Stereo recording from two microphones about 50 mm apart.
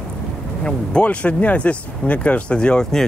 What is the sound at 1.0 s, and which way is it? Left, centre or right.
Speech, left.